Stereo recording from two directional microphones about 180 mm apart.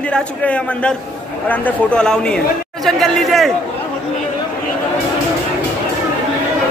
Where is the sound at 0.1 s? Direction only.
5° left (ahead or behind).